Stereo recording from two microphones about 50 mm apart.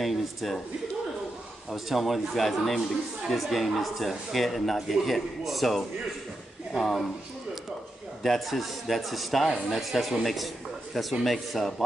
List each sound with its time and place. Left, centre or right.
0.0 s speech: centre
1.7 s speech: centre
8.2 s a man's voice: centre